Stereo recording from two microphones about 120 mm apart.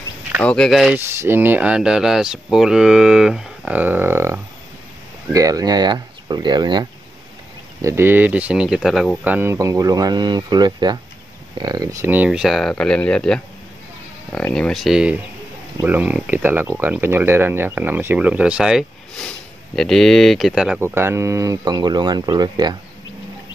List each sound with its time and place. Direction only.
0.4 s speech: 10° left (ahead or behind)
0.7 s speech: centre (ahead or behind)
0.9 s speech: 20° right (ahead or behind); by 6.9 s 35° right (ahead or behind)
7.8 s speech: 20° right (ahead or behind); by 9.2 s centre (ahead or behind)
9.2 s speech: 15° right (ahead or behind)
12.1 s speech: 10° right (ahead or behind)
20.8 s speech: 20° right (ahead or behind); by 22.8 s 35° right (ahead or behind)